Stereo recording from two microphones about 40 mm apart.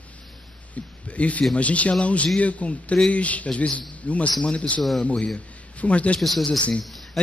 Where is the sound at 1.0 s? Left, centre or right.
Left.